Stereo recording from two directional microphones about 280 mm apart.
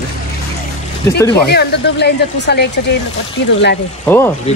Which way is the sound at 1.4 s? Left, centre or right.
Left.